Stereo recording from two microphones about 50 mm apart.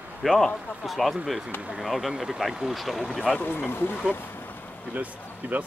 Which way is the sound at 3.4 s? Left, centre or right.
Left.